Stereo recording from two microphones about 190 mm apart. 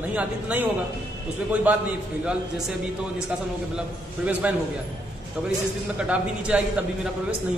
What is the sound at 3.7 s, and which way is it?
Speech, 10° right (ahead or behind).